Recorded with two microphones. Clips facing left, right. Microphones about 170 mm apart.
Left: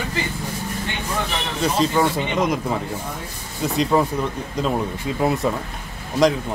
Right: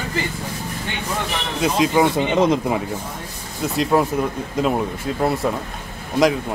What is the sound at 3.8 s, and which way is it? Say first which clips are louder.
Speech: right 1 dB; 5° right (ahead or behind).